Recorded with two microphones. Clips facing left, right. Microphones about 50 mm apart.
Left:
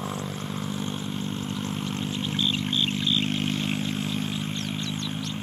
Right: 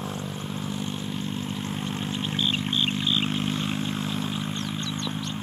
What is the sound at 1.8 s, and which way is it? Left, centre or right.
Vehicle, centre.